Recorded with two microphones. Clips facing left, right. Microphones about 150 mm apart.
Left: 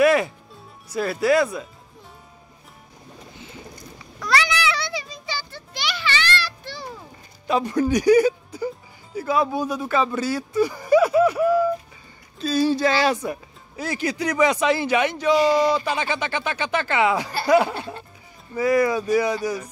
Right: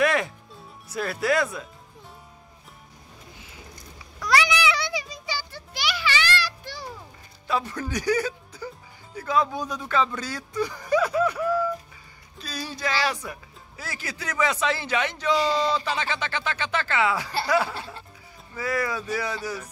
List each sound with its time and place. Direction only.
0.0 s music: 5° left (ahead or behind)
0.8 s speech: centre (ahead or behind)
4.2 s a sound: 10° right (ahead or behind)
7.4 s speech: 20° left (ahead or behind)
12.4 s speech: 30° left (ahead or behind)
17.5 s a sound: 20° left (ahead or behind)
18.5 s speech: 20° left (ahead or behind)